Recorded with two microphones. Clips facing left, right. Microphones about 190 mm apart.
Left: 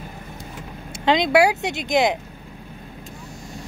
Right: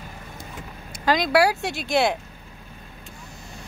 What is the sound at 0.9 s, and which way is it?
Speech, 25° left (ahead or behind).